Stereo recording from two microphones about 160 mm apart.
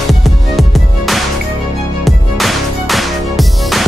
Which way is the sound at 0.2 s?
Centre (ahead or behind).